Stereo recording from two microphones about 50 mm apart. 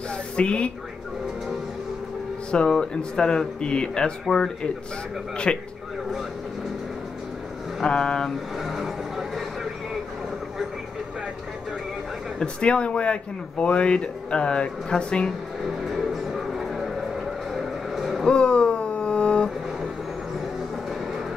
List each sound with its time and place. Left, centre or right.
0.4 s speech: left
2.5 s speech: centre
5.5 s speech: left
7.8 s speech: centre
8.6 s speech: centre
12.4 s speech: left
15.6 s music: centre
17.6 s a sound: centre
18.2 s a sound: centre